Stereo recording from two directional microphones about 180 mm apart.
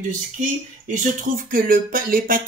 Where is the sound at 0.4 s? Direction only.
45° right (ahead or behind).